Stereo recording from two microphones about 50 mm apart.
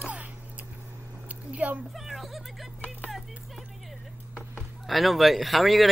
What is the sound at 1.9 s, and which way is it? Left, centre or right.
Speech, centre.